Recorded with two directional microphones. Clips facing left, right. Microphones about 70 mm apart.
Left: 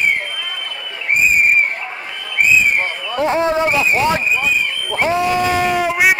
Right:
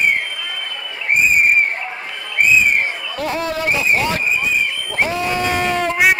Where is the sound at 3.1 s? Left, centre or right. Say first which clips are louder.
Left 8 dB; left.